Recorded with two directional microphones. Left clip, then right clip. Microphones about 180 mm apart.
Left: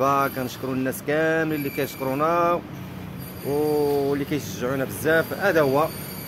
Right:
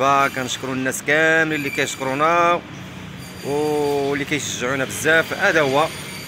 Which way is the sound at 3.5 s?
20° right (ahead or behind).